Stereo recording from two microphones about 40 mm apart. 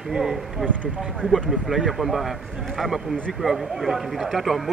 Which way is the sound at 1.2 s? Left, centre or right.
Right.